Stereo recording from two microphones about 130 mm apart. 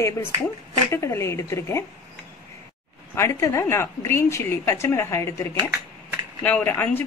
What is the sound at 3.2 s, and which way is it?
A woman's voice, 20° left (ahead or behind).